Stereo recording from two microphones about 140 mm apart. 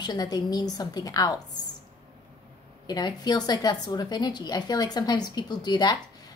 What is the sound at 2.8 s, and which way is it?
A woman's voice, 30° left (ahead or behind).